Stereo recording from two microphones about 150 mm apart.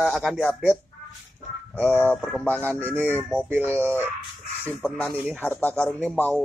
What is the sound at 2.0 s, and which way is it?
Speech, 10° left (ahead or behind).